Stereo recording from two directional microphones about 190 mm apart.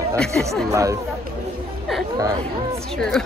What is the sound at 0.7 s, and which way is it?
Speech, 15° right (ahead or behind).